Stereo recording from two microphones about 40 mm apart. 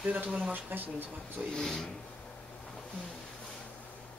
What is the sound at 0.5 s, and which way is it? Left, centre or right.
Speech, right.